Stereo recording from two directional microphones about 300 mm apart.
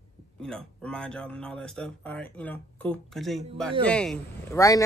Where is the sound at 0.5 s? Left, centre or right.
Centre.